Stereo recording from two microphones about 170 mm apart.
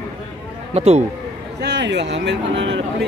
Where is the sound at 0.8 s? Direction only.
40° right (ahead or behind).